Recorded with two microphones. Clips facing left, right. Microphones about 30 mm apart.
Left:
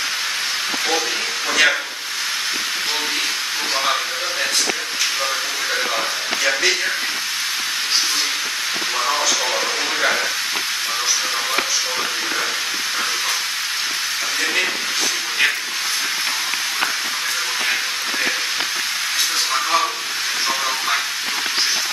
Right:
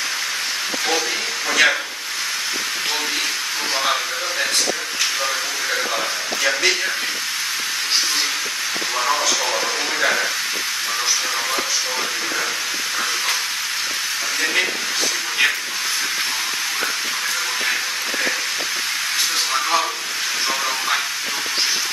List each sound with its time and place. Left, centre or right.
1.5 s speech: centre
3.8 s speech: centre
9.0 s speech: centre
14.4 s speech: centre
19.5 s speech: centre